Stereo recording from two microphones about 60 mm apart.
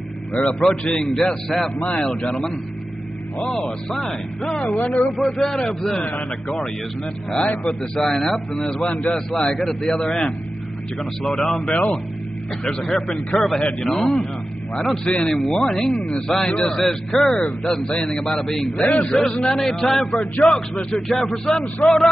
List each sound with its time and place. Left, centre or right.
0.5 s a man's voice: centre
1.8 s a man's voice: centre
3.9 s a man's voice: centre
7.2 s a man's voice: centre
15.0 s a man's voice: centre
15.3 s a man's voice: centre
16.8 s a man's voice: centre